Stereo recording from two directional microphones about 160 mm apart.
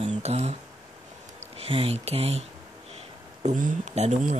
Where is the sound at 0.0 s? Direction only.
40° right (ahead or behind).